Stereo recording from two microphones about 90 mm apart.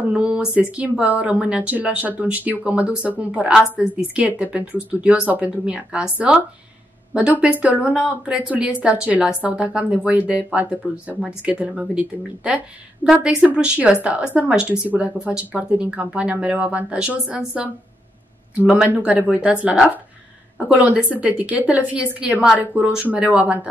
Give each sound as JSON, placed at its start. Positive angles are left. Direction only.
{"t": 0.0, "sound": "speech", "side_deg": -15}
{"t": 19.0, "sound": "speech", "side_deg": -15}